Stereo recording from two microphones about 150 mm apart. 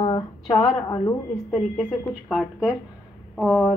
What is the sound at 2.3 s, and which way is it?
A woman's voice, centre (ahead or behind).